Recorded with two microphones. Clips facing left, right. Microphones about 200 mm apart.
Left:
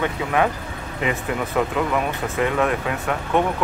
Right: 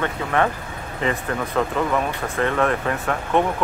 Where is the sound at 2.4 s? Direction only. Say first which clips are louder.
Even; 5° left (ahead or behind).